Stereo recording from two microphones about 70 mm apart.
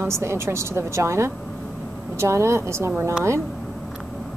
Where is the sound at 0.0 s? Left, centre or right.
Right.